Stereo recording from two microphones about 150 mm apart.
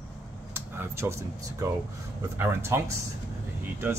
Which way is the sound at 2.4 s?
15° right (ahead or behind).